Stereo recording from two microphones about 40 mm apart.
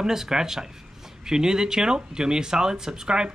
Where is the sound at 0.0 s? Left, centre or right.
Centre.